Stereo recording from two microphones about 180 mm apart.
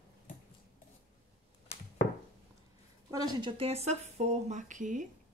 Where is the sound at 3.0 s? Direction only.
20° right (ahead or behind); by 5.1 s 45° right (ahead or behind).